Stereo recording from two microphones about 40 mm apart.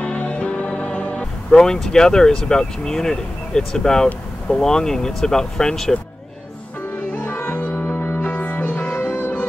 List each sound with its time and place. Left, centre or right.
0.0 s music: left
1.5 s speech: centre
7.4 s music: left
7.7 s music: left
8.5 s music: left
8.7 s music: left
9.1 s music: left